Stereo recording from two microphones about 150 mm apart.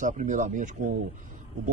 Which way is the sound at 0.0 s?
60° right (ahead or behind).